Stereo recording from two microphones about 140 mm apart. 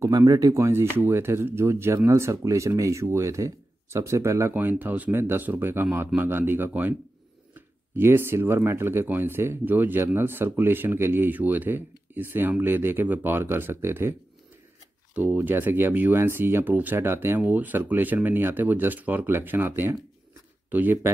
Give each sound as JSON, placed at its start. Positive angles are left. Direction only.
{"t": 0.0, "sound": "speech", "side_deg": -25}
{"t": 15.1, "sound": "speech", "side_deg": -15}